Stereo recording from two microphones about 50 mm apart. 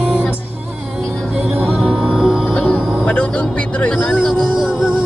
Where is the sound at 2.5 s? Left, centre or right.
Centre.